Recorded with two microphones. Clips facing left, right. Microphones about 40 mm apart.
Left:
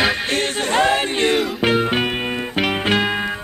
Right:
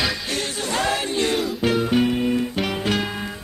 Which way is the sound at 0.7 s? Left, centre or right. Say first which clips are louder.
Left 5 dB; left.